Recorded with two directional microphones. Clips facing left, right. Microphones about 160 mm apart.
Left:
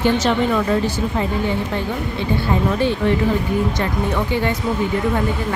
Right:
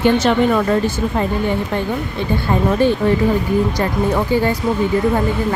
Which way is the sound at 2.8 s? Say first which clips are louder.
Right 3 dB; 45° right (ahead or behind).